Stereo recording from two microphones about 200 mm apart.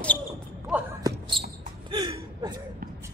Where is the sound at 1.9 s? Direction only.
25° right (ahead or behind).